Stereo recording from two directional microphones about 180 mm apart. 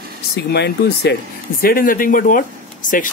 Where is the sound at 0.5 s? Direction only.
65° left (ahead or behind).